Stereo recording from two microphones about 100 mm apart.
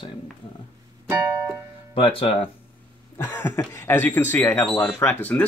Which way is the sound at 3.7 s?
25° left (ahead or behind).